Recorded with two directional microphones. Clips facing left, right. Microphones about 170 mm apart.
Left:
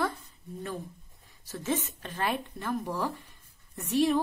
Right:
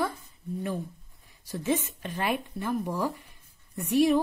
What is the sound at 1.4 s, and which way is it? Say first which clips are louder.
A woman's voice: right 3 dB; 15° right (ahead or behind).